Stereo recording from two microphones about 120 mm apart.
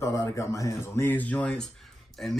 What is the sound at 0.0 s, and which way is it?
Speech, 25° left (ahead or behind).